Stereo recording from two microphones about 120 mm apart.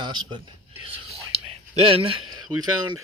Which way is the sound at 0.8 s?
55° right (ahead or behind).